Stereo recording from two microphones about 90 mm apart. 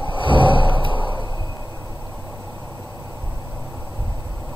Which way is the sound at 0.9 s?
65° left (ahead or behind).